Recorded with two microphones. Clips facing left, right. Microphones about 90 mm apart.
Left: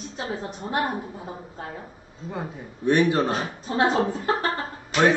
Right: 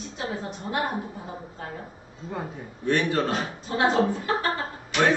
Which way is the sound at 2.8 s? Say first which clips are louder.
Left 4 dB; 20° left (ahead or behind).